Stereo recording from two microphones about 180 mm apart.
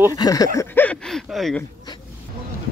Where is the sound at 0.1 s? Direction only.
20° left (ahead or behind).